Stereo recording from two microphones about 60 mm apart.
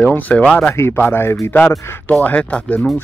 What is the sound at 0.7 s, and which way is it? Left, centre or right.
Speech, left.